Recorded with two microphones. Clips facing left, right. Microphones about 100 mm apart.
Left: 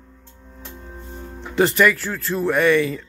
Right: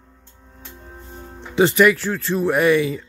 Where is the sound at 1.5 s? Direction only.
Centre (ahead or behind).